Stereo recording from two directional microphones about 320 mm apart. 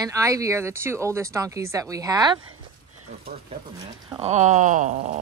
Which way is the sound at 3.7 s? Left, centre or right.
Centre.